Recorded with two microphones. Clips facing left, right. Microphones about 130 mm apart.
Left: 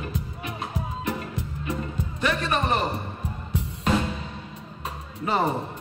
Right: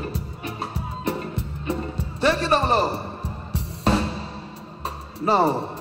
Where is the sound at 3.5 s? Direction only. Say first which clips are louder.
Right 2 dB; 35° right (ahead or behind).